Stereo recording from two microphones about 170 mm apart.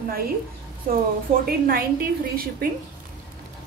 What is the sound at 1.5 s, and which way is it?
A woman's voice, 60° right (ahead or behind).